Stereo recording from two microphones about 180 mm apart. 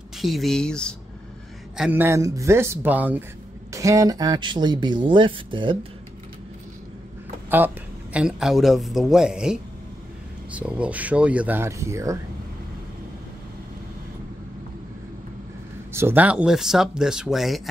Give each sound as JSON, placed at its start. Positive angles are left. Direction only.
{"t": 0.2, "sound": "speech", "side_deg": 0}
{"t": 1.8, "sound": "speech", "side_deg": -10}
{"t": 7.4, "sound": "speech", "side_deg": -10}
{"t": 15.9, "sound": "speech", "side_deg": -15}